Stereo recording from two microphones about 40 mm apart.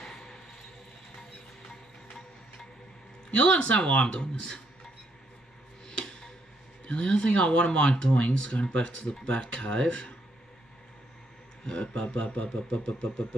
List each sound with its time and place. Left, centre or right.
0.0 s a sound: centre
3.3 s speech: left
5.9 s music: left
6.9 s speech: left
11.8 s speech: left